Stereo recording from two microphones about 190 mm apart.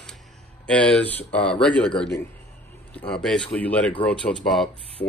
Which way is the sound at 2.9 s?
5° left (ahead or behind).